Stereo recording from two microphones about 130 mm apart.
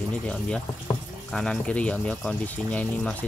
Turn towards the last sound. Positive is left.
turn(degrees=10)  # may be behind; listen again after turning